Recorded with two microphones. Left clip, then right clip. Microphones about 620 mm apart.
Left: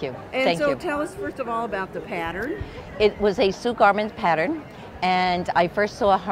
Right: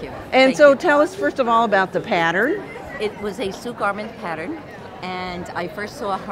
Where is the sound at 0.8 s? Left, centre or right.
Right.